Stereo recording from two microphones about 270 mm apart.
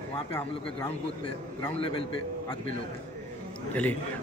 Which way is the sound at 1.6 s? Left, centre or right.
Centre.